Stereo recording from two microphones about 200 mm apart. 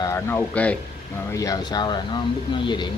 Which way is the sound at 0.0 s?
10° left (ahead or behind).